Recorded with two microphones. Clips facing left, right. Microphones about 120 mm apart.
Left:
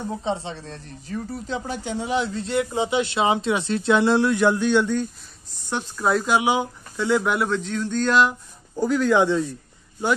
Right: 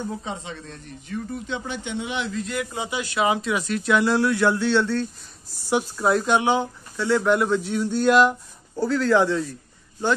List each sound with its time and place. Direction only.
0.2 s speech: 30° left (ahead or behind); by 5.0 s 15° left (ahead or behind)
5.7 s speech: 5° right (ahead or behind); by 7.3 s 15° left (ahead or behind)
7.3 s speech: 5° right (ahead or behind)
8.7 s speech: 15° left (ahead or behind)